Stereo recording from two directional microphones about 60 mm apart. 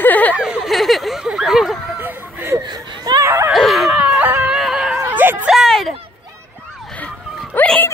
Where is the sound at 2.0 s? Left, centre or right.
Right.